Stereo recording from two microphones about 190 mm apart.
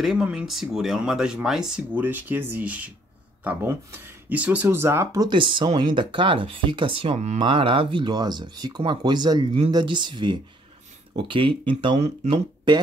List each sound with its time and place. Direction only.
0.0 s speech: 5° right (ahead or behind); by 12.8 s 25° right (ahead or behind)